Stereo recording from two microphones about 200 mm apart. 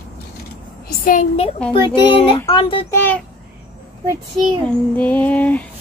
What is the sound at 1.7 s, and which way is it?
Speech, 25° left (ahead or behind).